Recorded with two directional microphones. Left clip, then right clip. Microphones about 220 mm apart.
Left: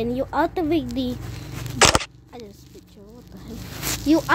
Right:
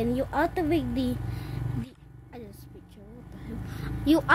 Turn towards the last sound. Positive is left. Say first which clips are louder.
# left 3 dB
turn(degrees=-5)  # may be behind; listen again after turning